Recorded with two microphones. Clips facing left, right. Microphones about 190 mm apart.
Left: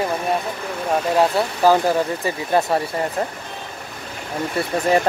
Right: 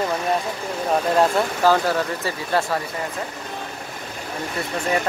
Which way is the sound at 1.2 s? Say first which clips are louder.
Left 2 dB; 15° left (ahead or behind).